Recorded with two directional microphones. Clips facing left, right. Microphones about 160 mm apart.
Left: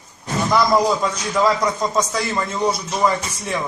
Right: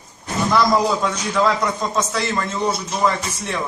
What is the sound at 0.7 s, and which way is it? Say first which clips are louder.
A man's voice: left 1 dB; centre (ahead or behind).